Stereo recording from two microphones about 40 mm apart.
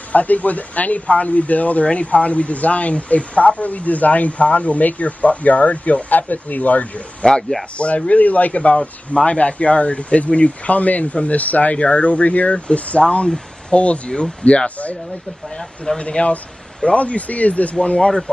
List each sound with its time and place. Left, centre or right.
0.1 s speech: left
7.2 s speech: centre
7.7 s speech: left
8.7 s speech: left
15.5 s speech: centre
16.0 s speech: left
17.8 s speech: left